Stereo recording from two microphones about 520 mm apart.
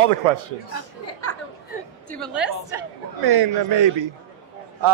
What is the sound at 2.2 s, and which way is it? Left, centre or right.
Speech, centre.